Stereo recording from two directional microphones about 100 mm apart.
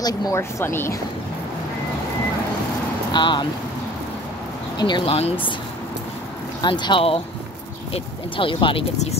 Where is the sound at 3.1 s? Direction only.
50° left (ahead or behind).